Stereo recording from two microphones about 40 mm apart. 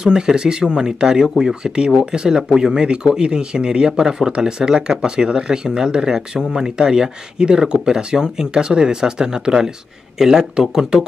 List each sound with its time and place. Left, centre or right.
0.0 s speech: centre